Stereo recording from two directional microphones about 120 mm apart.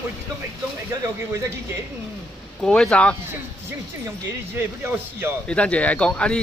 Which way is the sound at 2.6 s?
5° left (ahead or behind).